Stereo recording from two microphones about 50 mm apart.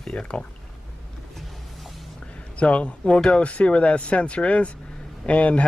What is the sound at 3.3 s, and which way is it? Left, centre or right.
Speech, left.